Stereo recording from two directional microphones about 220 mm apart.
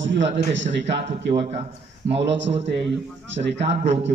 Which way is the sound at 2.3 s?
55° right (ahead or behind).